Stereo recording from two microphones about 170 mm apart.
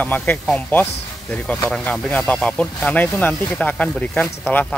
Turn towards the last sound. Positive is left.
turn(degrees=10)  # may be behind; listen again after turning